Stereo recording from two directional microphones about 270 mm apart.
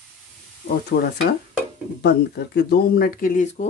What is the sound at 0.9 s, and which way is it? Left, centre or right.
Speech, left.